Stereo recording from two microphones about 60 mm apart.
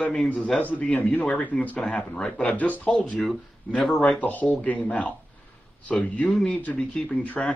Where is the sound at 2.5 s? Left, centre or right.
Left.